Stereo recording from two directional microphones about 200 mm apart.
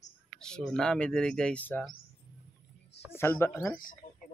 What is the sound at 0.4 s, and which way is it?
Speech, 5° left (ahead or behind).